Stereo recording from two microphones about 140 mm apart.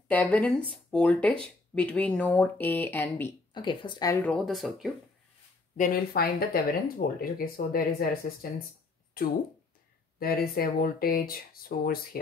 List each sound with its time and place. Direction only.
0.1 s speech: 10° left (ahead or behind)
3.5 s speech: 35° left (ahead or behind)
4.2 s speech: centre (ahead or behind)
5.8 s speech: 90° left